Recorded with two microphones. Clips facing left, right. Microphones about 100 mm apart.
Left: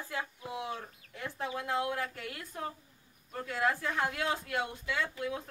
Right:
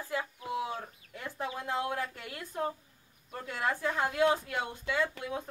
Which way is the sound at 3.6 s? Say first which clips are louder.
Even; 25° right (ahead or behind).